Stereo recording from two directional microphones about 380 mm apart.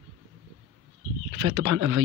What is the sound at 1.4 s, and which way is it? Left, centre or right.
Speech, right.